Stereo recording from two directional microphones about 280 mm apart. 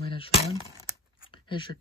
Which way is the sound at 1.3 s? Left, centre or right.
Centre.